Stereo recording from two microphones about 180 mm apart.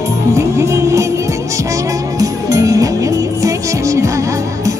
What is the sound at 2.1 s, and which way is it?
Music, 20° right (ahead or behind).